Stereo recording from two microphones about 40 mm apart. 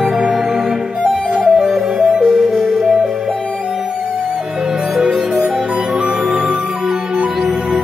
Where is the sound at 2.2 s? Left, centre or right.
Centre.